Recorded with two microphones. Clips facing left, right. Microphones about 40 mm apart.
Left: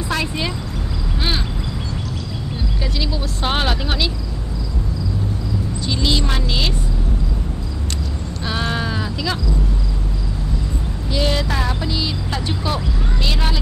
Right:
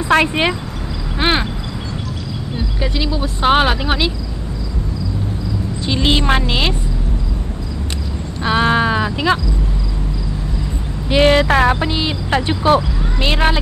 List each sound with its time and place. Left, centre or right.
0.1 s speech: right
2.5 s speech: centre
5.8 s speech: right
8.4 s a sound: right
11.1 s speech: right